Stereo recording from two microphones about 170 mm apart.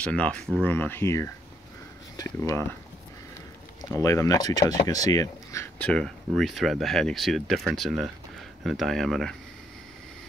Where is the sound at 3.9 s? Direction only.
15° left (ahead or behind).